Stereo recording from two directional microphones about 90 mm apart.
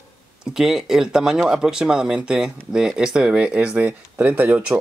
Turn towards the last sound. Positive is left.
turn(degrees=-15)  # may be behind; listen again after turning